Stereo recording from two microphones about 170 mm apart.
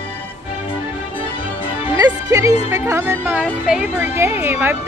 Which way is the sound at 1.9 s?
20° right (ahead or behind).